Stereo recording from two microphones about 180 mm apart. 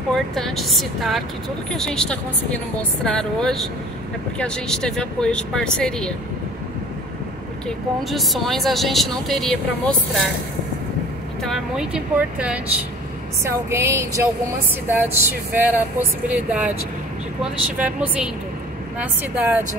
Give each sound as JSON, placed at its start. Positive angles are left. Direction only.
{"t": 0.1, "sound": "speech", "side_deg": 0}
{"t": 7.6, "sound": "speech", "side_deg": 0}
{"t": 11.4, "sound": "speech", "side_deg": 0}